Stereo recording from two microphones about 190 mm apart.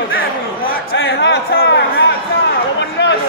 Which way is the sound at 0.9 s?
80° left.